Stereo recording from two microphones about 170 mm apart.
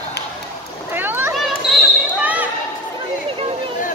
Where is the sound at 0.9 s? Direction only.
10° right (ahead or behind).